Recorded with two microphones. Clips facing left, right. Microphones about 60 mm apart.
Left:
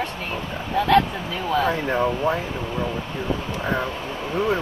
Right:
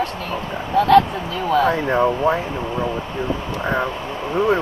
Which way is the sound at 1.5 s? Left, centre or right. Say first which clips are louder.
Right 4 dB; centre.